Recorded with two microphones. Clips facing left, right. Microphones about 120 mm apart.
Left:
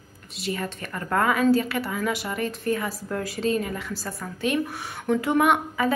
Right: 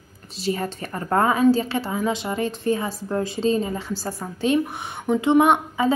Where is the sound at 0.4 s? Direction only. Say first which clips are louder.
Right 4 dB; 30° right (ahead or behind).